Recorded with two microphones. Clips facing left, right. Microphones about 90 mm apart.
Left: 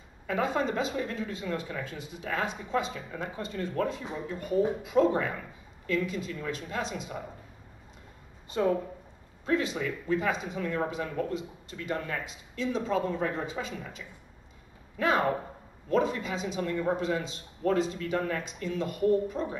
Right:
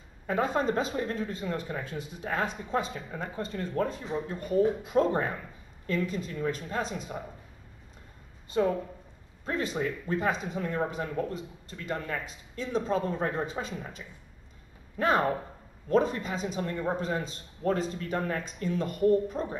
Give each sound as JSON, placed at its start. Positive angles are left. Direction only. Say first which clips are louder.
{"t": 0.3, "sound": "speech", "louder": "right 1 dB", "side_deg": -40}
{"t": 9.5, "sound": "speech", "louder": "left 2 dB", "side_deg": -40}